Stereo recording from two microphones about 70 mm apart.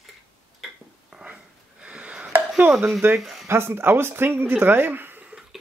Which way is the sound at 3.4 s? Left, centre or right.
Right.